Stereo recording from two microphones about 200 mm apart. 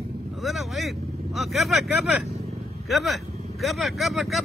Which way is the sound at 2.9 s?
Centre (ahead or behind).